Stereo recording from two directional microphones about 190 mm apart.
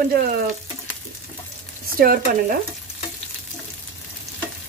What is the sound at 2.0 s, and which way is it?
Speech, 50° right (ahead or behind).